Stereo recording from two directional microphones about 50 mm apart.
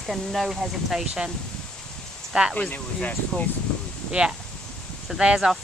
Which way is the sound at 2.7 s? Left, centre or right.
Left.